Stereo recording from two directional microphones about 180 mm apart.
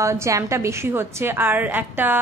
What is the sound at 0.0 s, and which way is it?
A woman's voice, 15° right (ahead or behind).